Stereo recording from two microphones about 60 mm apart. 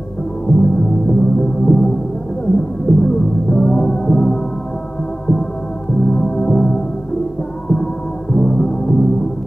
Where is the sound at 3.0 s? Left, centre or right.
Centre.